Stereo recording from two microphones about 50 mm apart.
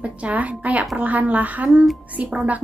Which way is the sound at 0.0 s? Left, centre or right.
Right.